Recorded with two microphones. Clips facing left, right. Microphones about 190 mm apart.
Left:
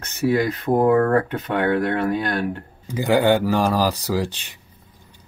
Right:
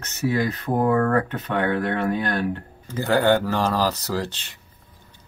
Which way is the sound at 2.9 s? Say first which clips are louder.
Left 2 dB; 15° left (ahead or behind).